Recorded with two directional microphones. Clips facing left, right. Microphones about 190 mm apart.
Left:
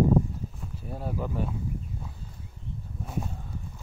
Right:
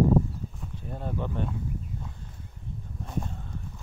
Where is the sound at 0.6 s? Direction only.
5° left (ahead or behind).